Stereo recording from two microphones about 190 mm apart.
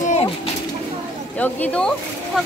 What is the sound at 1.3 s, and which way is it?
Speech, 10° left (ahead or behind).